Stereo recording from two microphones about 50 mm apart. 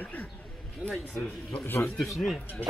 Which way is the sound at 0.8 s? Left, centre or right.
Right.